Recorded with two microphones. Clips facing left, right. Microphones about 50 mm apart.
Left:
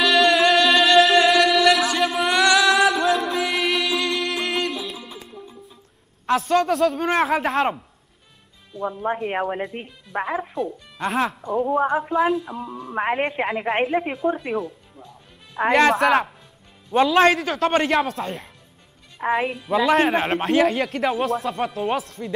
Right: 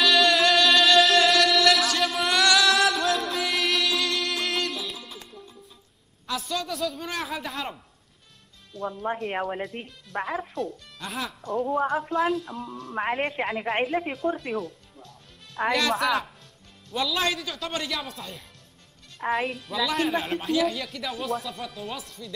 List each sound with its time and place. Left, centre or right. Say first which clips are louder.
0.0 s music: left 3 dB; centre
6.2 s a man's voice: left 11 dB; left
8.7 s speech: left 5 dB; centre
11.1 s a man's voice: left 11 dB; left
11.4 s speech: even; centre
15.9 s a man's voice: left 7 dB; left
16.9 s a man's voice: left 11 dB; left
17.4 s a man's voice: left 11 dB; left
19.1 s speech: left 4 dB; centre
19.8 s a man's voice: left 8 dB; left
20.1 s a man's voice: left 6 dB; left